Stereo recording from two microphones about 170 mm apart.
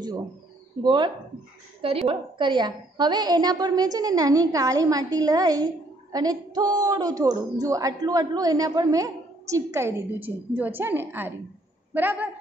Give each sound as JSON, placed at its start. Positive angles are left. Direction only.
{"t": 0.8, "sound": "a woman's voice", "side_deg": -30}